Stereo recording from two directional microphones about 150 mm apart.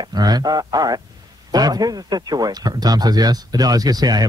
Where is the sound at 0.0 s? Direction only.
25° right (ahead or behind).